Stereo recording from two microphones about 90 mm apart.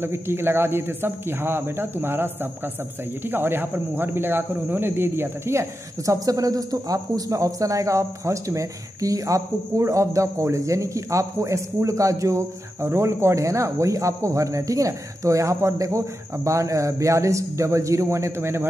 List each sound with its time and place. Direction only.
0.0 s speech: 25° right (ahead or behind)